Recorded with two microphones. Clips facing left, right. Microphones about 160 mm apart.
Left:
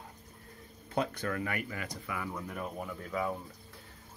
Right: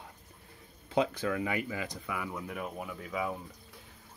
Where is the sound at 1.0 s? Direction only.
10° right (ahead or behind).